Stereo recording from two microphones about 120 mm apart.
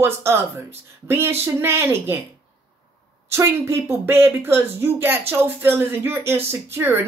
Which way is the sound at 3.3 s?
20° right (ahead or behind).